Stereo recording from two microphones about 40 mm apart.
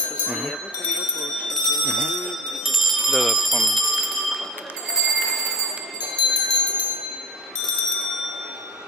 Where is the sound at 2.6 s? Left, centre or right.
Centre.